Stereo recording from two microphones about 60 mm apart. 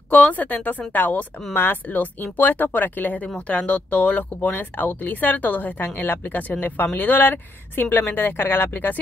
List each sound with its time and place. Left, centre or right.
0.1 s speech: left